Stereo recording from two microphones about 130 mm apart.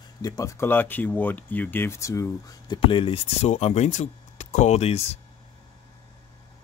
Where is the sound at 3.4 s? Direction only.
55° left (ahead or behind).